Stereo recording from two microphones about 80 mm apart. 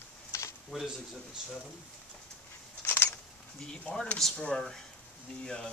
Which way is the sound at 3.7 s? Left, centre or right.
Centre.